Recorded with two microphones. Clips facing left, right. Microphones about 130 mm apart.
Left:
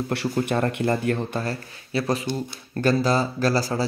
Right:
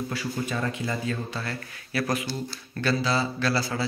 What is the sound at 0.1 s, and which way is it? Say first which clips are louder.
A man's voice: left 6 dB; 65° left (ahead or behind).